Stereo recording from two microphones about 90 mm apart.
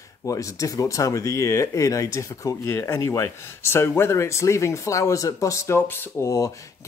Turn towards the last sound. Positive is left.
turn(degrees=40)  # may be behind; listen again after turning